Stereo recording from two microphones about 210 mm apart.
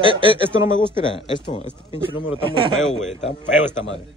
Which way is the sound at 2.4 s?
25° right (ahead or behind).